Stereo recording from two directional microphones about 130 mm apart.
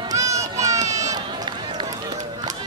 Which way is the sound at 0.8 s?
60° right (ahead or behind).